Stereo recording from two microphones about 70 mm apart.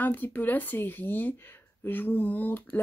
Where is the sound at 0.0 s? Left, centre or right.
Left.